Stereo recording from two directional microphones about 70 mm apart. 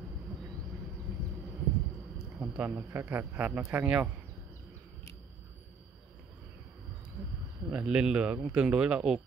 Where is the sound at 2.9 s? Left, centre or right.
Right.